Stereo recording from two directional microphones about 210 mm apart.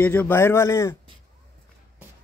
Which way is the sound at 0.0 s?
5° left (ahead or behind).